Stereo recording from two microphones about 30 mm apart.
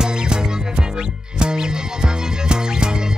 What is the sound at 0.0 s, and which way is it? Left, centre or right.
Music, right.